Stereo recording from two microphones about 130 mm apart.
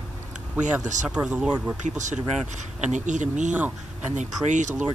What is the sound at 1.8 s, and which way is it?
Speech, 70° right (ahead or behind).